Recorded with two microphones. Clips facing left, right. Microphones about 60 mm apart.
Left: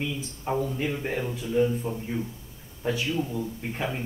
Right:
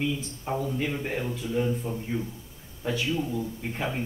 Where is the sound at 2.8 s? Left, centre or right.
Centre.